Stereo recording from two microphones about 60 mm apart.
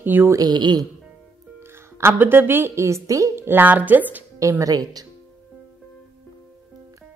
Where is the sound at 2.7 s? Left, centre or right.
Right.